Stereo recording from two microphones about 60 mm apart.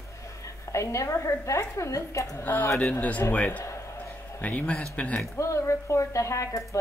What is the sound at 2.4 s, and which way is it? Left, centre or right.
A man's voice, left.